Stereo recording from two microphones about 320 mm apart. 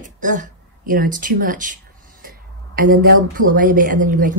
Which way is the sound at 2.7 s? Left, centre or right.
Right.